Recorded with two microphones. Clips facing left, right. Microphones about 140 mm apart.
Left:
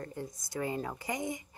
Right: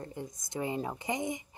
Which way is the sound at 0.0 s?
20° right (ahead or behind).